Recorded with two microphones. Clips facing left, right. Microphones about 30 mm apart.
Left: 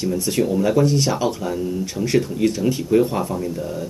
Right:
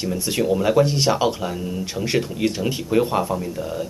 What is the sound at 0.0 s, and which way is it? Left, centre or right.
Speech, centre.